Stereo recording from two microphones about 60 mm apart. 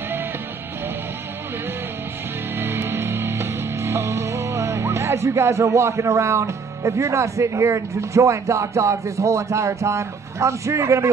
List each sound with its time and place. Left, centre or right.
2.5 s music: right